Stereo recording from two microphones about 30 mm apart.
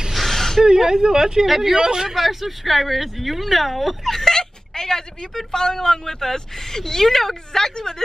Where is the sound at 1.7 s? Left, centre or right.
Right.